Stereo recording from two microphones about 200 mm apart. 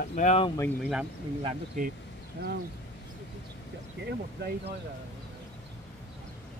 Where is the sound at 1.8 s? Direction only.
40° right (ahead or behind).